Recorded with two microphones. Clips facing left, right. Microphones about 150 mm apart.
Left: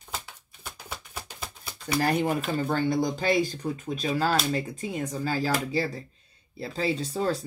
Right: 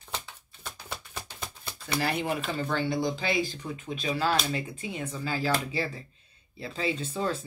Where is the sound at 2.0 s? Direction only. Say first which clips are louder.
Left 4 dB; 40° left (ahead or behind).